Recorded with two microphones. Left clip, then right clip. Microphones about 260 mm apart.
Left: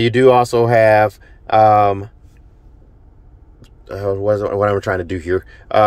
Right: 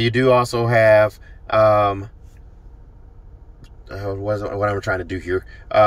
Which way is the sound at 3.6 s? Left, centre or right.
Centre.